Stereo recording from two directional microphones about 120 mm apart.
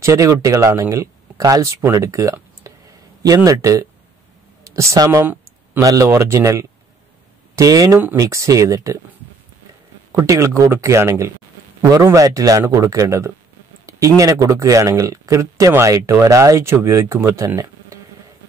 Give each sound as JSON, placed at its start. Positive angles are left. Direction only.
{"t": 0.0, "sound": "speech", "side_deg": -25}
{"t": 10.1, "sound": "speech", "side_deg": -25}